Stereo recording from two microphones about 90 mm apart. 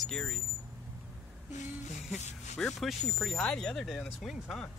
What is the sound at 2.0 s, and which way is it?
Speech, 5° left (ahead or behind).